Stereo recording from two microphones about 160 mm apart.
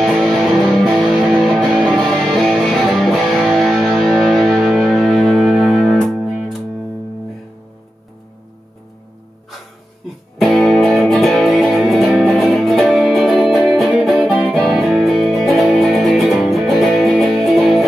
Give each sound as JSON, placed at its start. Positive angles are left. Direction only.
{"t": 0.0, "sound": "music", "side_deg": 0}
{"t": 3.7, "sound": "music", "side_deg": -10}
{"t": 10.4, "sound": "music", "side_deg": 0}